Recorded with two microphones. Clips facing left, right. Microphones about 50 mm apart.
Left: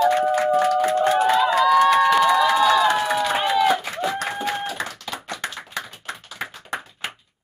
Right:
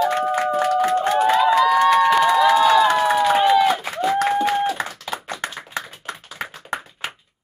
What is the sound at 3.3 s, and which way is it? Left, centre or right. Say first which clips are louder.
Run: right 3 dB; centre.